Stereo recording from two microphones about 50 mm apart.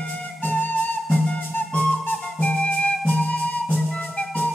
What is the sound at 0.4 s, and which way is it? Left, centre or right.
Flute, left.